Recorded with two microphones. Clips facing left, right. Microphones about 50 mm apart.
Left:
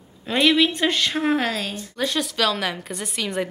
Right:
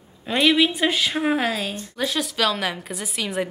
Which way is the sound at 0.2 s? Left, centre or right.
Centre.